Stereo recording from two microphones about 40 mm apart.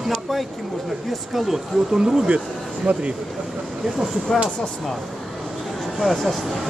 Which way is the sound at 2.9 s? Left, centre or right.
Right.